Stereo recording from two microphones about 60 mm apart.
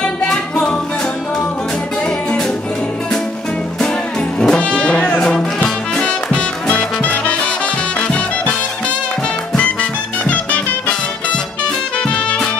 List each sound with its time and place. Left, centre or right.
0.0 s music: centre
4.4 s music: centre
9.6 s music: left